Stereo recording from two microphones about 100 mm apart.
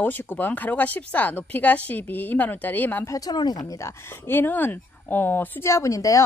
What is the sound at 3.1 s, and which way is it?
Speech, 40° left (ahead or behind).